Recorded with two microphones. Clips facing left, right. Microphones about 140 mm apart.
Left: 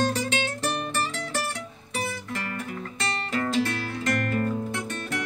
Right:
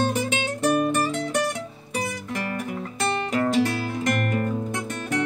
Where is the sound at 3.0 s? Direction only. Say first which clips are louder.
Right 5 dB; 15° right (ahead or behind).